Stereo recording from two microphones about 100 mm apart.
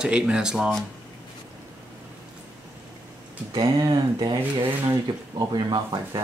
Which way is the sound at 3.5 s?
45° right (ahead or behind).